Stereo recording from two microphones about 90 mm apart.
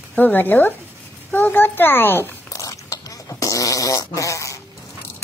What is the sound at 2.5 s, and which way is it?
Fart, 35° left (ahead or behind).